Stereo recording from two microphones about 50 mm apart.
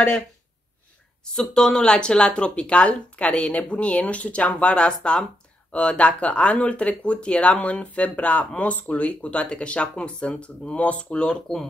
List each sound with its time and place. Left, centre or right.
1.2 s speech: centre